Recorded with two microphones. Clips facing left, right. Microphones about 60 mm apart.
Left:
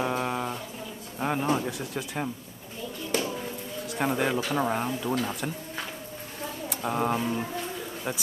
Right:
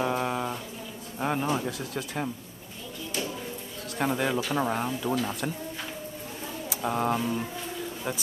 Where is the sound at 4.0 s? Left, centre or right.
Centre.